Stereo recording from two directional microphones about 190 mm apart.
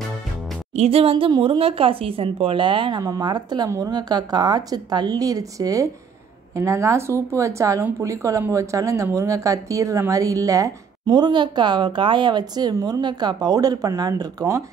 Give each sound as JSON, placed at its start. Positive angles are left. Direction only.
{"t": 0.7, "sound": "speech", "side_deg": -30}